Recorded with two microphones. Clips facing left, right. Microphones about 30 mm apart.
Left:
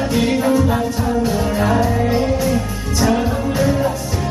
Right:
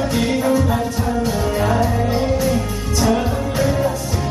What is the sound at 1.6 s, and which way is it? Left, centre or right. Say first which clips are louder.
Music: left 2 dB; centre.